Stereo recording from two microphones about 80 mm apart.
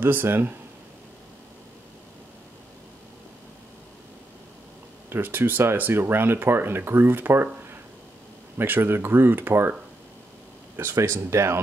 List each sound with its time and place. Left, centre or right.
0.0 s speech: right
5.1 s speech: right
8.5 s speech: right
10.8 s speech: right